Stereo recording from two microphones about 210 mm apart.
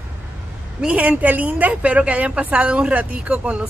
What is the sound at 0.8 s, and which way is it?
A woman's voice, 5° right (ahead or behind).